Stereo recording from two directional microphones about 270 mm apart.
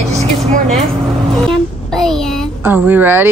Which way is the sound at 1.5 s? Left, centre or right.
Centre.